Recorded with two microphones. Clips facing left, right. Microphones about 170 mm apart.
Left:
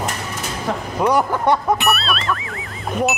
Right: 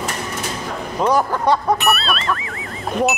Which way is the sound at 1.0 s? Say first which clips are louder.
Even; 15° left (ahead or behind).